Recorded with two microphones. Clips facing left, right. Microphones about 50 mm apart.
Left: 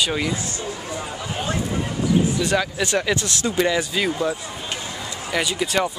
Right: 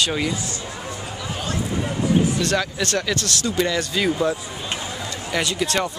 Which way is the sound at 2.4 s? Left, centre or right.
Centre.